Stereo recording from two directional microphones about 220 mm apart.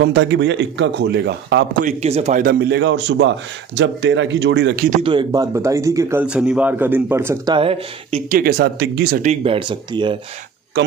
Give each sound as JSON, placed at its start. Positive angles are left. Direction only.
{"t": 0.0, "sound": "a man's voice", "side_deg": -55}
{"t": 1.8, "sound": "speech", "side_deg": -30}
{"t": 2.4, "sound": "a man's voice", "side_deg": -50}
{"t": 5.0, "sound": "speech", "side_deg": -20}
{"t": 7.5, "sound": "speech", "side_deg": -25}
{"t": 8.4, "sound": "speech", "side_deg": -45}